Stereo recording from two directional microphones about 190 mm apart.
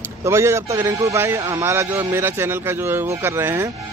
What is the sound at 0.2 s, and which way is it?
Speech, 15° right (ahead or behind).